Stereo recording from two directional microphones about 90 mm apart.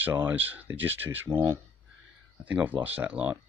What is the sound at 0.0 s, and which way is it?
Speech, 25° right (ahead or behind).